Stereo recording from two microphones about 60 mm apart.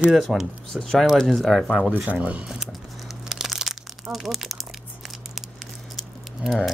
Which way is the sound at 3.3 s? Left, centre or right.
Centre.